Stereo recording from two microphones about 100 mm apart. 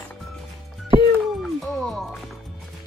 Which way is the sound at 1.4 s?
Centre (ahead or behind).